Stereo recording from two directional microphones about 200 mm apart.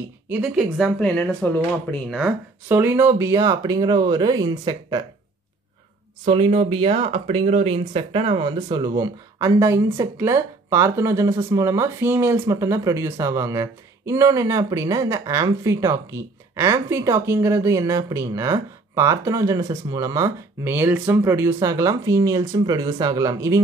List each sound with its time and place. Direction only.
0.3 s speech: 5° right (ahead or behind)
2.1 s speech: 10° right (ahead or behind)
6.2 s speech: 25° right (ahead or behind)